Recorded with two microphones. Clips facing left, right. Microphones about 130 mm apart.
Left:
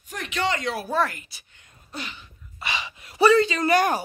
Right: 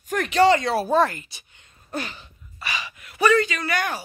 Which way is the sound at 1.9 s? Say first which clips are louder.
Right 6 dB; 45° right (ahead or behind).